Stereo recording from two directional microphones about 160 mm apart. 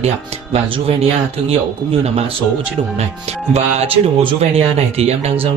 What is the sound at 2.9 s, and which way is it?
Speech, 40° right (ahead or behind).